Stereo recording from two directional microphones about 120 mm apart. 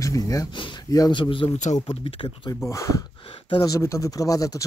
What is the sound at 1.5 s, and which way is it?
Speech, 80° left.